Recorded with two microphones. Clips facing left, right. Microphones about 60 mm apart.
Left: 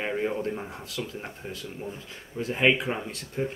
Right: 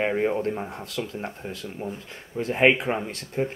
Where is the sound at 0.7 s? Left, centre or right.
Right.